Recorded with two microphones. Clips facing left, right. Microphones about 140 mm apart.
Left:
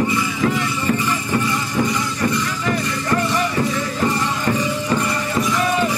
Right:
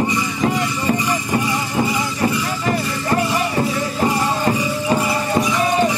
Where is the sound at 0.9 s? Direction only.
15° right (ahead or behind).